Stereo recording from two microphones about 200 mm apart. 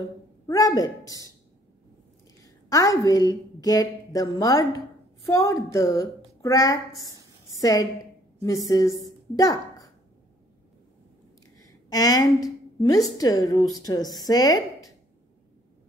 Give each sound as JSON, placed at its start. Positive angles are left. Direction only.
{"t": 0.5, "sound": "a woman's voice", "side_deg": 15}
{"t": 2.4, "sound": "a woman's voice", "side_deg": 15}
{"t": 11.9, "sound": "a woman's voice", "side_deg": 20}